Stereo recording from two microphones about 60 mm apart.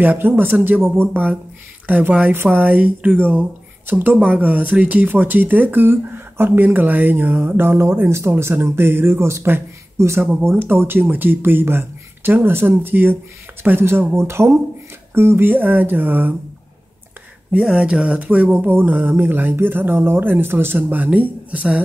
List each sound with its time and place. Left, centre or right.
0.0 s speech: right
0.8 s speech: right
1.9 s speech: right
10.4 s speech: right
17.5 s speech: centre
18.6 s speech: right
20.7 s speech: right